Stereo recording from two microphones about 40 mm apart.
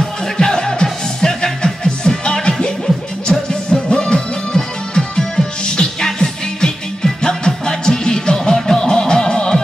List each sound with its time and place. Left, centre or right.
0.0 s music: centre
3.7 s music: left